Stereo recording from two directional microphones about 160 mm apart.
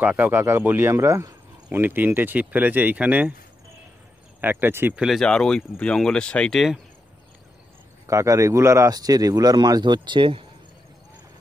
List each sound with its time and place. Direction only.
0.0 s speech: 10° right (ahead or behind)
4.4 s speech: 10° right (ahead or behind)
8.1 s a man's voice: 20° right (ahead or behind)